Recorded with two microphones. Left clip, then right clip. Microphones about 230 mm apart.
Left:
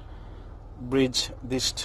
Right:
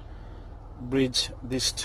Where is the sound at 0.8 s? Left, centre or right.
Centre.